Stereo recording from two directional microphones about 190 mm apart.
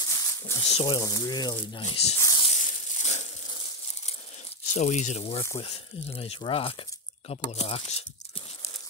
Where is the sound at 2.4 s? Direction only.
35° left (ahead or behind).